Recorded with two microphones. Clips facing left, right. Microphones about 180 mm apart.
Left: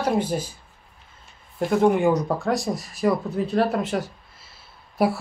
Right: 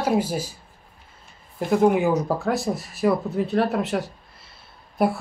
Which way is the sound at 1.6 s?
5° right (ahead or behind).